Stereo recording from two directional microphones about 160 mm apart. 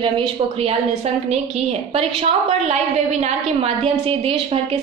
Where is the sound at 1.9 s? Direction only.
40° right (ahead or behind).